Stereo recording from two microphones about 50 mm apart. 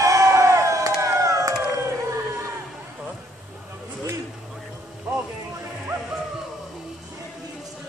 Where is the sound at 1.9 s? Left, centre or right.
Right.